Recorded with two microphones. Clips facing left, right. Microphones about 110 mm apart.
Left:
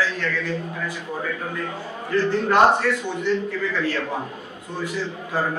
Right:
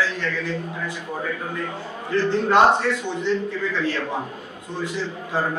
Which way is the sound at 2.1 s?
20° right (ahead or behind).